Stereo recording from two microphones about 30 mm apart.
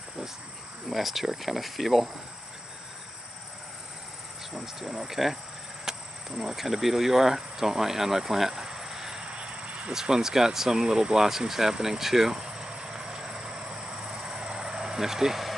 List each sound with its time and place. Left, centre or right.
0.8 s speech: centre
4.6 s speech: centre
9.2 s vehicle: right
9.9 s speech: centre
11.2 s vehicle: centre